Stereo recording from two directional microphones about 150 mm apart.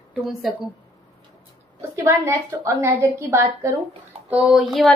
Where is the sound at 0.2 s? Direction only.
Centre (ahead or behind).